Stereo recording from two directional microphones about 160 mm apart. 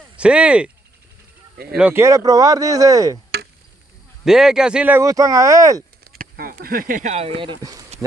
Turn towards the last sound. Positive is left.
turn(degrees=-20)  # may be behind; listen again after turning